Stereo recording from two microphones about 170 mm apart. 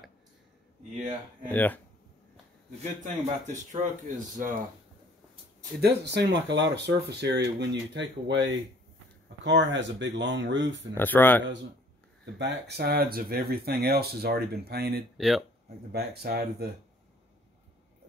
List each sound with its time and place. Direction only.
1.5 s speech: 10° left (ahead or behind)
2.8 s speech: 40° right (ahead or behind)
5.8 s speech: 75° right (ahead or behind)
11.0 s speech: 10° left (ahead or behind)
12.4 s speech: 85° right; by 15.0 s 70° right (ahead or behind)
15.1 s speech: centre (ahead or behind)
15.9 s speech: 65° right (ahead or behind)